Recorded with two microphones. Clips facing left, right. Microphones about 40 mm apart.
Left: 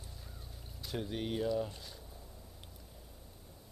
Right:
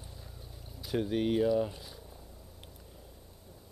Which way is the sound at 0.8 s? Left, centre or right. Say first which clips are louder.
Right 8 dB; centre.